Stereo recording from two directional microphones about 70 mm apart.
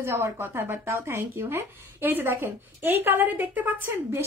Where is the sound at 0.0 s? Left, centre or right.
Right.